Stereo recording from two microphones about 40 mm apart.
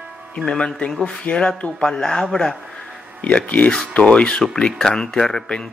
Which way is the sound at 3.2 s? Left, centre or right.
Left.